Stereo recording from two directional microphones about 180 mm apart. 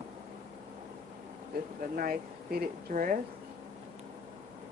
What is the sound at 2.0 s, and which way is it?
Speech, 55° right (ahead or behind).